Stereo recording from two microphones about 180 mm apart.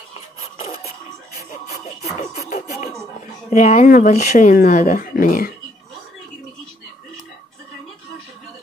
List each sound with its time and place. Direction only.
0.4 s printer: 35° left (ahead or behind)
2.5 s music: 40° left (ahead or behind)
3.4 s speech: 40° left (ahead or behind)